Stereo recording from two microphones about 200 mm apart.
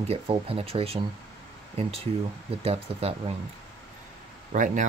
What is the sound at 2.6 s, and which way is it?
Speech, 30° right (ahead or behind).